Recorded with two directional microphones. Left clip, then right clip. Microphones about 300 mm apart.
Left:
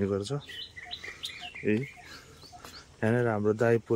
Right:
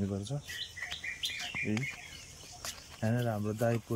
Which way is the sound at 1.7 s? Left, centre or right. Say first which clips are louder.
Left 8 dB; centre.